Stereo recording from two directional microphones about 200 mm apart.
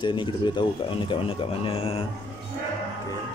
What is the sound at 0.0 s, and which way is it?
Speech, 25° left (ahead or behind).